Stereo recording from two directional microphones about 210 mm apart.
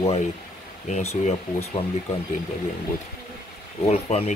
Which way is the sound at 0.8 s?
30° left (ahead or behind).